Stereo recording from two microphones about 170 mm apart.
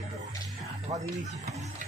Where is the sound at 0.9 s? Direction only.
40° right (ahead or behind).